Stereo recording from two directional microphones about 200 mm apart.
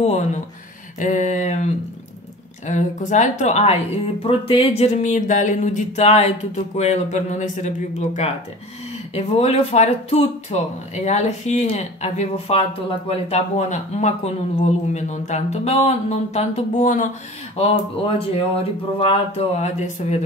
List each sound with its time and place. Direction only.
0.0 s speech: 35° left (ahead or behind)